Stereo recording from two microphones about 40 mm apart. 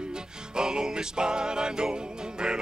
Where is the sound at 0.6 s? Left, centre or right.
Centre.